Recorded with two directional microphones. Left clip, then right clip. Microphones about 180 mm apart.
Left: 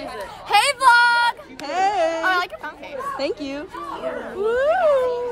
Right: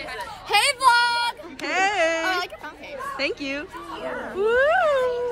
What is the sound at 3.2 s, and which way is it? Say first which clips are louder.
Speech: right 2 dB; 20° left (ahead or behind).